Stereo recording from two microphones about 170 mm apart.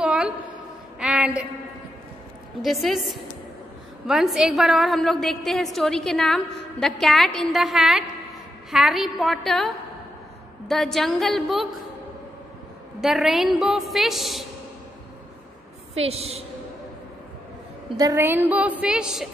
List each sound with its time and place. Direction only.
0.0 s a sound: 5° right (ahead or behind)
2.6 s a woman's voice: centre (ahead or behind)
10.7 s a woman's voice: centre (ahead or behind)
13.0 s a woman's voice: centre (ahead or behind)
15.9 s a woman's voice: 35° right (ahead or behind)
17.9 s a woman's voice: 20° right (ahead or behind)